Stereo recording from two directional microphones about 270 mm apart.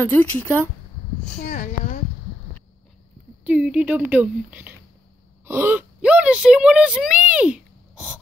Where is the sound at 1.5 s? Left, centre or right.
Left.